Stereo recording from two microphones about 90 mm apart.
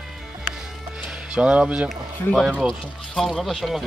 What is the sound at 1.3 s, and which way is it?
Speech, 10° right (ahead or behind).